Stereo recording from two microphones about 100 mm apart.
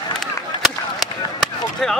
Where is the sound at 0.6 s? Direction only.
5° left (ahead or behind).